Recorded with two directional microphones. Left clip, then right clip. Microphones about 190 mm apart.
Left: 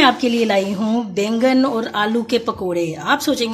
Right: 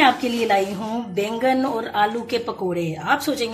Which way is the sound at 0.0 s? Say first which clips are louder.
Left 3 dB; 45° left (ahead or behind).